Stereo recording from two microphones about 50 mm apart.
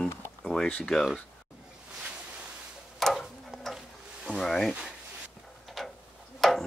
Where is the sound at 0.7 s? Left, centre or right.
Left.